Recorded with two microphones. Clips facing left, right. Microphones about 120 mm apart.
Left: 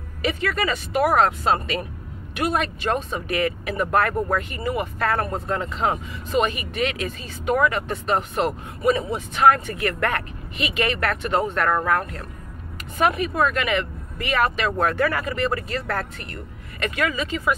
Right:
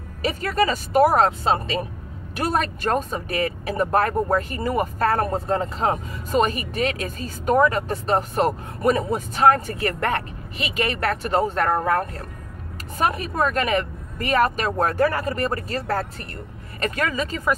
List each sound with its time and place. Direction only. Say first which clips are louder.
0.2 s speech: right 2 dB; 40° right (ahead or behind)
9.4 s speech: even; 30° right (ahead or behind)